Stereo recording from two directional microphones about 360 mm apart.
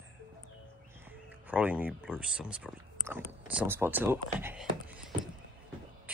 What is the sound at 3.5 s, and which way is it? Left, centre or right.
Speech, centre.